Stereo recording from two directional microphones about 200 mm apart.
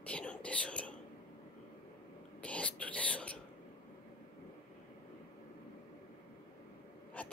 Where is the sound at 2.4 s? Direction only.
5° left (ahead or behind).